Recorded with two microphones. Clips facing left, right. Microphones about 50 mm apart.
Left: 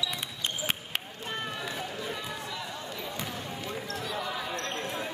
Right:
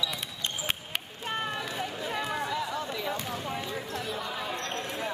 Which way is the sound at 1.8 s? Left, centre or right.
Right.